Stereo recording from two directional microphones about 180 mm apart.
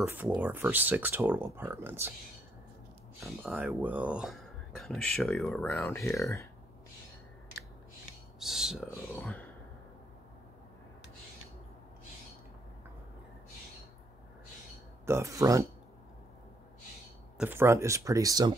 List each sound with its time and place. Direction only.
0.0 s speech: 10° right (ahead or behind)
3.4 s speech: 10° right (ahead or behind)
5.7 s speech: 15° left (ahead or behind)
8.4 s a sound: centre (ahead or behind)
9.1 s speech: 10° left (ahead or behind)
15.0 s speech: 15° right (ahead or behind)
17.4 s speech: 10° right (ahead or behind)